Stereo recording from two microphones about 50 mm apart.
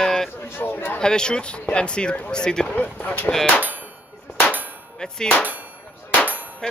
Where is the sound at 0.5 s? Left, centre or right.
Left.